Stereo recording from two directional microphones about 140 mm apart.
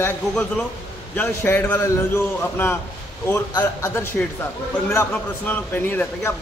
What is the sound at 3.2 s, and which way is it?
A man's voice, 20° left (ahead or behind).